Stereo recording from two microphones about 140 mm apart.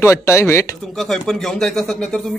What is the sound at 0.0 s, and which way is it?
Speech, 20° left (ahead or behind).